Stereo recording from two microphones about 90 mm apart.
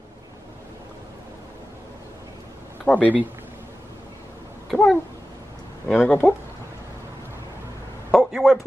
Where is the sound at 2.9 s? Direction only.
15° left (ahead or behind).